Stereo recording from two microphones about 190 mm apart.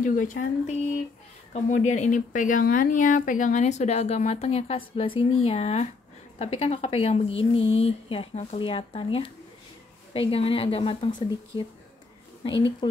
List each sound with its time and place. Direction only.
0.0 s speech: 45° left (ahead or behind)
1.9 s speech: 40° left (ahead or behind)
10.3 s a woman's voice: 30° left (ahead or behind)